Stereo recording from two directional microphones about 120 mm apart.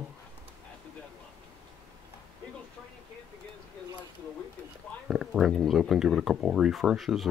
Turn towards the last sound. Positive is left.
turn(degrees=0)  # may be behind; listen again after turning